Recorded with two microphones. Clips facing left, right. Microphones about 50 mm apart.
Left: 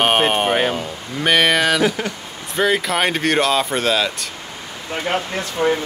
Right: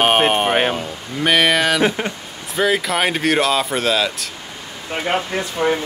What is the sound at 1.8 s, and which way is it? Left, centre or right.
Speech, right.